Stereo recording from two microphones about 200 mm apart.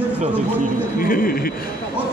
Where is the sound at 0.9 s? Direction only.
45° left (ahead or behind).